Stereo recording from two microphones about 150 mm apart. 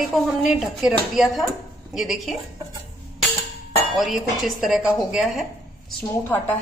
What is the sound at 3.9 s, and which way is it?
Speech, centre (ahead or behind).